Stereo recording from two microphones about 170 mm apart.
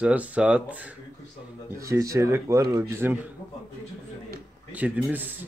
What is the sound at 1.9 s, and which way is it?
Speech, 15° right (ahead or behind).